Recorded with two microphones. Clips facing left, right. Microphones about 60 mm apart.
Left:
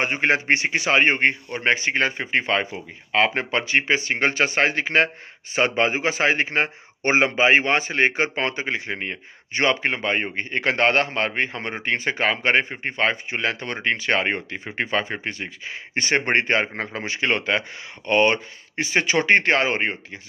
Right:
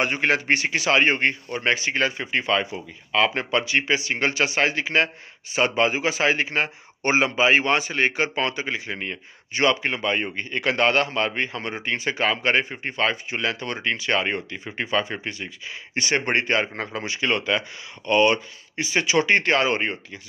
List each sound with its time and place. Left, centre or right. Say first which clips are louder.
0.0 s a man's voice: left 1 dB; left